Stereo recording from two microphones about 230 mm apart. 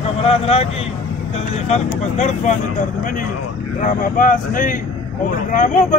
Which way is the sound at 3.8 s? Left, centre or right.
Left.